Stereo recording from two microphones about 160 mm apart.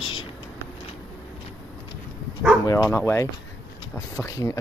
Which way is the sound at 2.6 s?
20° left (ahead or behind).